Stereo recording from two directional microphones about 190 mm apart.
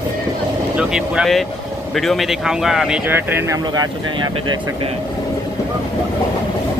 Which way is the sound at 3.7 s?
20° right (ahead or behind).